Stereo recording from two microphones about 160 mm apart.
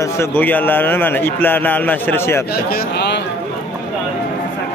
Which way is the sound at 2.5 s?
85° left.